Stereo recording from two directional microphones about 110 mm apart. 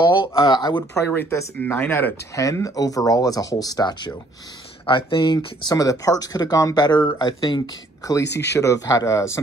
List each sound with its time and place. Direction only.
0.0 s a sound: 45° left (ahead or behind)
0.4 s speech: 40° left (ahead or behind)
0.9 s speech: 25° left (ahead or behind)
2.3 s speech: 30° left (ahead or behind)
4.8 s speech: 50° left (ahead or behind)
8.0 s speech: 30° left (ahead or behind)